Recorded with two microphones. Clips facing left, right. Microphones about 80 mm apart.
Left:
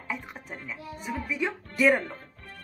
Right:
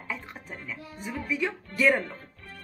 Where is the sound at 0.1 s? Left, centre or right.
Centre.